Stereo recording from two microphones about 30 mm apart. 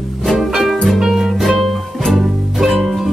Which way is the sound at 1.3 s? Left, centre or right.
Centre.